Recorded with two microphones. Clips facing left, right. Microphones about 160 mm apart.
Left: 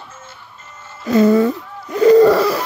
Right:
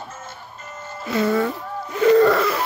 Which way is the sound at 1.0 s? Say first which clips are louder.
Left 9 dB; 40° left (ahead or behind).